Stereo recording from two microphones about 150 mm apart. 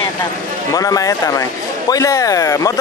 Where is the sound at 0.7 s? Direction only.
25° left (ahead or behind).